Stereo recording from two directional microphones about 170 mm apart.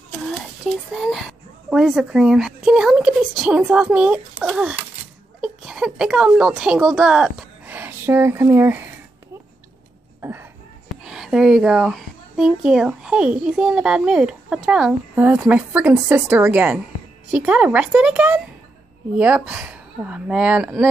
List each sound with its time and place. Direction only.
0.2 s a child's voice: centre (ahead or behind)
11.1 s speech: centre (ahead or behind)